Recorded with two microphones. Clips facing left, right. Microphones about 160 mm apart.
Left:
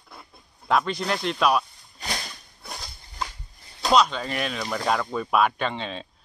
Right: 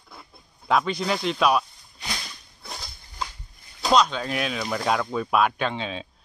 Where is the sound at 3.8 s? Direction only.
Centre (ahead or behind).